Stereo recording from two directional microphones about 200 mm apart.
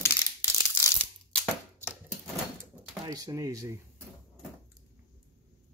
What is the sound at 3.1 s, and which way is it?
Speech, 15° right (ahead or behind).